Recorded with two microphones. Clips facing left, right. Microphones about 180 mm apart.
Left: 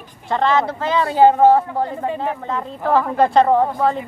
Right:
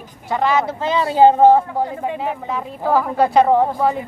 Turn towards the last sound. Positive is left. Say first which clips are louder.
# even
turn(degrees=-10)  # may be behind; listen again after turning